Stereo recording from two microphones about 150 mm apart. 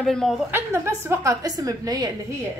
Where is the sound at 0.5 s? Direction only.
15° right (ahead or behind).